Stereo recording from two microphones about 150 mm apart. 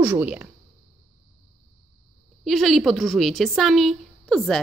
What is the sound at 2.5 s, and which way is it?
A woman's voice, centre (ahead or behind).